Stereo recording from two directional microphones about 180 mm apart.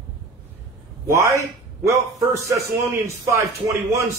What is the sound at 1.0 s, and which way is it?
A man's voice, 15° right (ahead or behind).